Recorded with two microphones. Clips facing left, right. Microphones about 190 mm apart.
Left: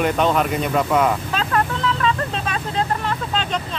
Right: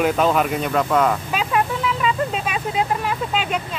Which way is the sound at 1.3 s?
10° right (ahead or behind).